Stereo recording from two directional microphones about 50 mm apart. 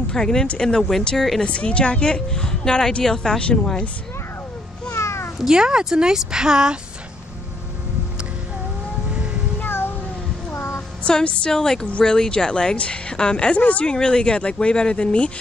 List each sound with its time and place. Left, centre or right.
0.1 s speech: centre
1.4 s a woman's voice: left
4.9 s meow: left
5.4 s a woman's voice: centre
9.6 s cat: left
10.5 s child singing: left
11.1 s a woman's voice: left
11.5 s a woman's voice: centre; by 13.9 s left
13.9 s a woman's voice: centre